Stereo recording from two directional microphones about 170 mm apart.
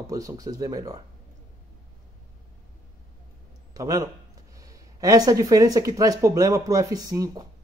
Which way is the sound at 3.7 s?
20° right (ahead or behind).